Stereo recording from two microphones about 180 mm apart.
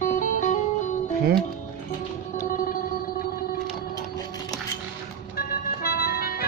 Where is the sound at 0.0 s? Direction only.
45° left (ahead or behind).